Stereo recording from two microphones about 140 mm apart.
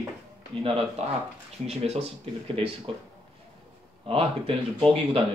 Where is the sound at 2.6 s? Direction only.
40° right (ahead or behind).